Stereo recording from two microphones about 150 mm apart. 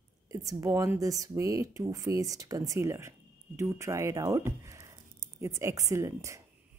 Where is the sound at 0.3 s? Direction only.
20° right (ahead or behind).